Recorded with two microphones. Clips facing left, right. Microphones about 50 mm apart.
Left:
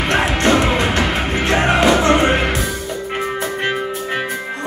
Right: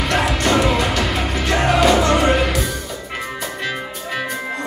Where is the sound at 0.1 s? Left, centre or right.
Left.